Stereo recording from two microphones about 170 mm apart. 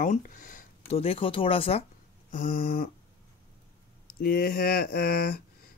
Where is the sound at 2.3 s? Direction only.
55° left (ahead or behind).